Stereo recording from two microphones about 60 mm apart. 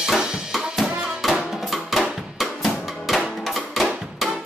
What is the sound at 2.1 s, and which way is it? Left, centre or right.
Drum, centre.